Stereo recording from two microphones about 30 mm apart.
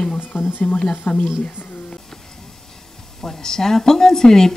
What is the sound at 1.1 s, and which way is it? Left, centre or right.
Speech, left.